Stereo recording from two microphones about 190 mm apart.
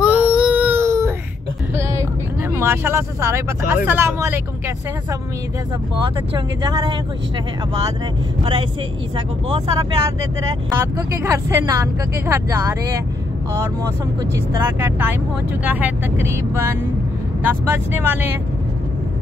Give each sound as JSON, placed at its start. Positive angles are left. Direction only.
{"t": 0.0, "sound": "baby cry", "side_deg": -5}
{"t": 2.5, "sound": "speech", "side_deg": -15}
{"t": 6.0, "sound": "speech", "side_deg": -20}
{"t": 10.7, "sound": "speech", "side_deg": -15}
{"t": 14.3, "sound": "speech", "side_deg": -15}